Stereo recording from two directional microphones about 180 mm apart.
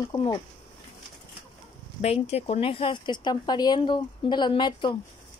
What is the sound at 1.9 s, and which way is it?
Speech, 35° left (ahead or behind).